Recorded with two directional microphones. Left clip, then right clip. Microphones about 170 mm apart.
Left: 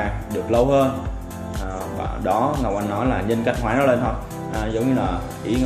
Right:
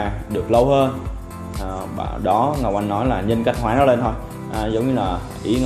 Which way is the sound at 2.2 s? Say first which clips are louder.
Right 3 dB; 35° right (ahead or behind).